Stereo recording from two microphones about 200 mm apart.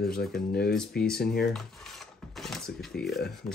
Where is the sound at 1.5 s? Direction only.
Centre (ahead or behind).